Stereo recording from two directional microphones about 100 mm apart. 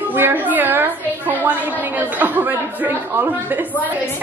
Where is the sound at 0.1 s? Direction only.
20° right (ahead or behind).